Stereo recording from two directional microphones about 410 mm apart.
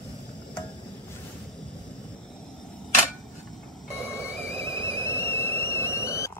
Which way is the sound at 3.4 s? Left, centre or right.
Centre.